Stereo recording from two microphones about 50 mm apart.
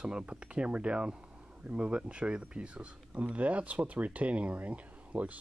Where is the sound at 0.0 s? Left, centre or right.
Centre.